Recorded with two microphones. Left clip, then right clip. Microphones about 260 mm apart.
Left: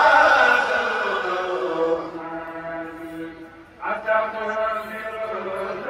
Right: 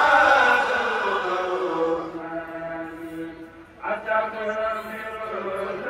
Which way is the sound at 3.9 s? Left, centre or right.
Centre.